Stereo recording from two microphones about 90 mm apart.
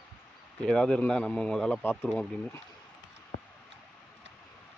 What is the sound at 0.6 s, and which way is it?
A man's voice, 10° left (ahead or behind).